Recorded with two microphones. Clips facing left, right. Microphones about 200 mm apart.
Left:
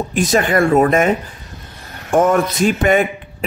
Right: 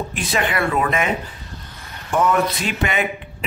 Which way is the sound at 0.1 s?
45° left (ahead or behind).